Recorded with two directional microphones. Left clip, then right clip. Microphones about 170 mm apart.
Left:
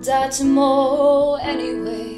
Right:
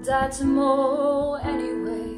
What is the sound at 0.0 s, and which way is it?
Music, centre (ahead or behind).